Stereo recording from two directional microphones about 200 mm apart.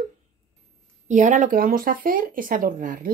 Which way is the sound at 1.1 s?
40° right (ahead or behind).